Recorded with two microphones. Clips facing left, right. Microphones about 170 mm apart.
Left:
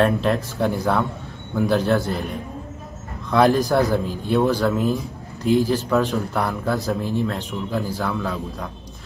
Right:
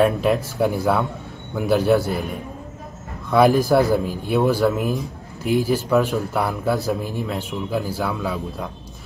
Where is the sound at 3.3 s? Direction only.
5° right (ahead or behind).